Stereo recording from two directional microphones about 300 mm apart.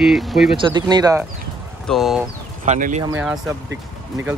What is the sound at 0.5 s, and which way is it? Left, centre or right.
Speech, centre.